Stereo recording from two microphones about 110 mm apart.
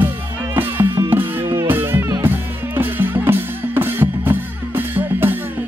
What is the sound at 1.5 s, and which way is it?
Music, 20° right (ahead or behind).